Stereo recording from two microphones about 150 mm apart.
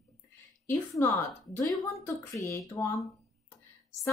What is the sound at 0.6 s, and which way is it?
Speech, 15° left (ahead or behind).